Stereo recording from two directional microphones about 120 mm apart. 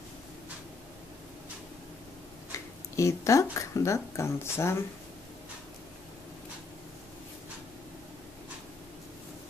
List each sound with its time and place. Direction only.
3.0 s speech: 25° left (ahead or behind)